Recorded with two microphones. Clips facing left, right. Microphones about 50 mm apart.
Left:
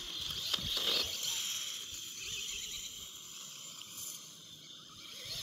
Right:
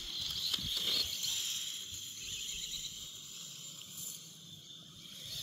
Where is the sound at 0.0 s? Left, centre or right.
Left.